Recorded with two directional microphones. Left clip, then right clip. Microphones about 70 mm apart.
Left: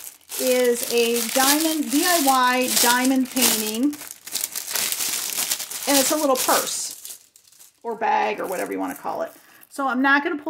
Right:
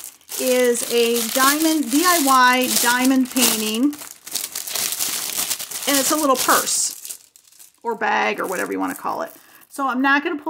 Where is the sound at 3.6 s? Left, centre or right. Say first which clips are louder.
Right 3 dB; right.